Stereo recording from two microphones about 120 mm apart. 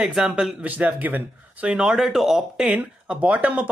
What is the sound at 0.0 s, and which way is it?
A man's voice, 5° right (ahead or behind).